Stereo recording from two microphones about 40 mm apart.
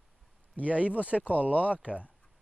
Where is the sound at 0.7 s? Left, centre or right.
Right.